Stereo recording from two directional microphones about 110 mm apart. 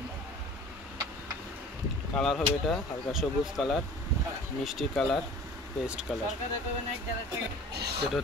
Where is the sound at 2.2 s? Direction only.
Centre (ahead or behind).